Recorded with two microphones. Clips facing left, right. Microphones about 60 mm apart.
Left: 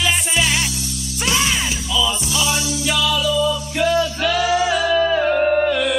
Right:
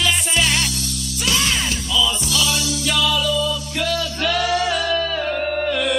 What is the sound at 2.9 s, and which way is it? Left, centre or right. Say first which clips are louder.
Music: left 1 dB; centre.